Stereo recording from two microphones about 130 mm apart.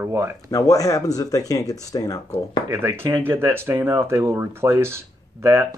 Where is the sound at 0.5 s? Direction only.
25° left (ahead or behind).